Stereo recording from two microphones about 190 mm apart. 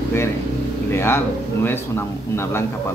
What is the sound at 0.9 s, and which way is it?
A man's voice, 15° left (ahead or behind).